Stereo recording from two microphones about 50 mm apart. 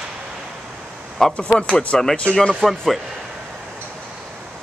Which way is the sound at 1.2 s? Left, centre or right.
Centre.